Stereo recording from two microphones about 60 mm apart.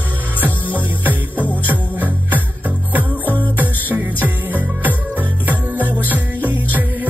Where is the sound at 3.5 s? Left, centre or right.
Right.